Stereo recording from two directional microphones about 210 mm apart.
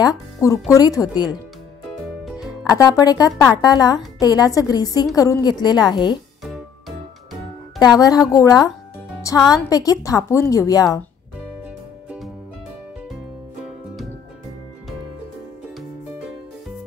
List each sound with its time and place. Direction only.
0.0 s a woman's voice: 15° left (ahead or behind)
2.7 s a woman's voice: 15° left (ahead or behind)
7.8 s a woman's voice: 15° left (ahead or behind)